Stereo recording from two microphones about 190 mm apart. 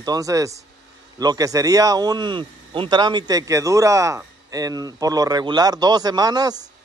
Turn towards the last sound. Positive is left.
turn(degrees=-20)  # may be behind; listen again after turning